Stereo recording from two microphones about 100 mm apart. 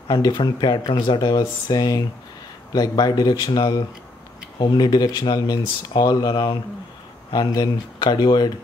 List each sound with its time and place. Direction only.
0.1 s speech: 50° left (ahead or behind)